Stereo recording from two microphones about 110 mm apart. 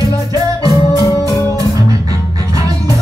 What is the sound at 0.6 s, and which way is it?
Music, 30° left (ahead or behind).